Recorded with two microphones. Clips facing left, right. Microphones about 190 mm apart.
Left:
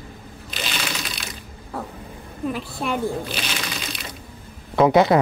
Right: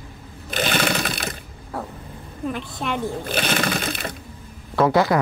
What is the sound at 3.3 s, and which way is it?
Sewing machine, 55° right (ahead or behind).